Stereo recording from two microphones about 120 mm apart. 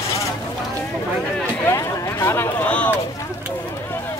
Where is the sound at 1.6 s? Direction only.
25° left (ahead or behind).